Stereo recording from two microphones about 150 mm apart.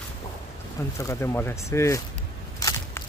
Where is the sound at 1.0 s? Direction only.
20° left (ahead or behind).